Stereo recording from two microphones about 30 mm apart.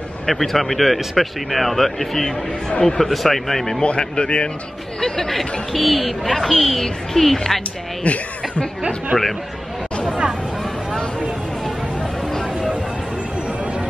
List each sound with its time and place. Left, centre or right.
0.3 s speech: centre
3.8 s speech: left
5.0 s speech: centre
8.0 s speech: left
9.1 s speech: right